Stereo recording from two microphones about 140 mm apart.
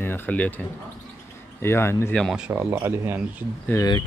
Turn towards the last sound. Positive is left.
turn(degrees=15)  # may be behind; listen again after turning